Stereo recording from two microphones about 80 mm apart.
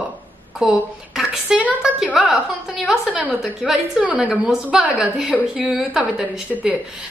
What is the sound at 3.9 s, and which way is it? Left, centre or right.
A woman's voice, centre.